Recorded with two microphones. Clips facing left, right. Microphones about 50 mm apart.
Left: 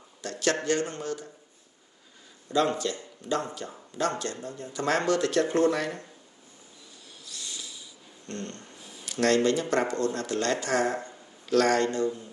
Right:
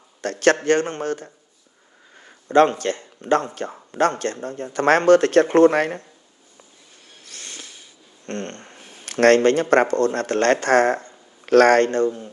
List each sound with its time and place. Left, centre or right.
0.2 s a man's voice: right
2.4 s speech: right
7.2 s a sound: right
11.4 s speech: right